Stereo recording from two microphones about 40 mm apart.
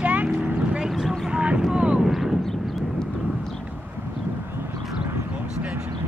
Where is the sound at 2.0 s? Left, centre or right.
Centre.